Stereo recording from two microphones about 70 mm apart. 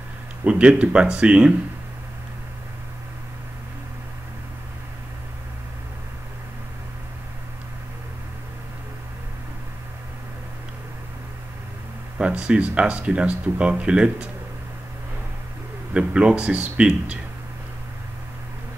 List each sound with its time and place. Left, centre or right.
0.4 s speech: centre
12.2 s speech: centre
15.9 s speech: centre